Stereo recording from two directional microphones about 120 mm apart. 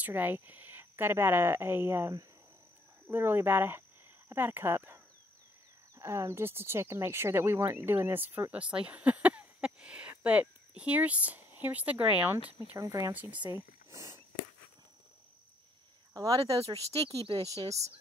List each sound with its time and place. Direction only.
0.0 s speech: 15° right (ahead or behind)
12.7 s speech: 25° right (ahead or behind)
16.1 s speech: 30° right (ahead or behind)